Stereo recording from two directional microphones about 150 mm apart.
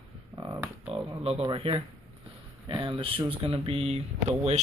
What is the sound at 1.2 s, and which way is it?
Speech, 40° right (ahead or behind).